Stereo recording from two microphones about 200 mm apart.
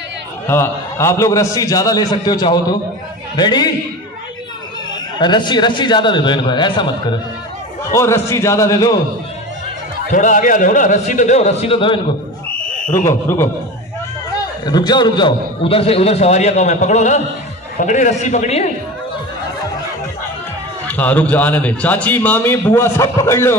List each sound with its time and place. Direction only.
0.5 s a man's voice: 15° left (ahead or behind)
5.2 s a man's voice: 20° left (ahead or behind)
10.1 s a man's voice: 40° left (ahead or behind)
12.4 s fire alarm: 10° left (ahead or behind)
14.6 s a man's voice: 20° left (ahead or behind)
20.8 s a man's voice: 10° left (ahead or behind)